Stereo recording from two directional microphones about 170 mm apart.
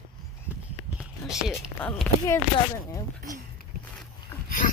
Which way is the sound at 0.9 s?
5° right (ahead or behind).